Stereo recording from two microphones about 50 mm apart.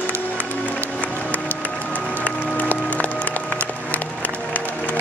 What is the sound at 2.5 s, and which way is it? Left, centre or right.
Music, left.